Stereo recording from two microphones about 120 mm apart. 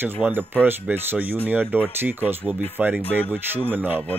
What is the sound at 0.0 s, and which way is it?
Speech, 15° right (ahead or behind).